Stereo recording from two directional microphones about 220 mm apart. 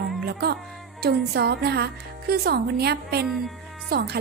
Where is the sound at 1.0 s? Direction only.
45° right (ahead or behind).